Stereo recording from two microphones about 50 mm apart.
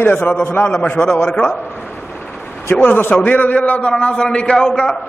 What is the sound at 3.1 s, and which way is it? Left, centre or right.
A man's voice, left.